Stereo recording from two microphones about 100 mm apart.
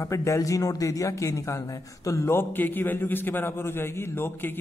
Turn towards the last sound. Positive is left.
turn(degrees=20)  # may be behind; listen again after turning